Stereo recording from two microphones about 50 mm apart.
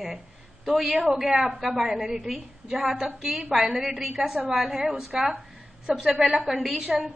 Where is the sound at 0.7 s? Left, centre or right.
Centre.